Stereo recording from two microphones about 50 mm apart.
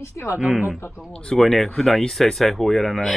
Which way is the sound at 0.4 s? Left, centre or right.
Centre.